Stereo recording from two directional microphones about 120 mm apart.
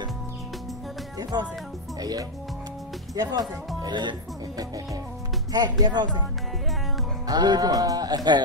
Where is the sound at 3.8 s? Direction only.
40° right (ahead or behind).